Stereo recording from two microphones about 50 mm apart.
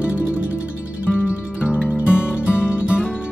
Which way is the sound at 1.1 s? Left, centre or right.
Left.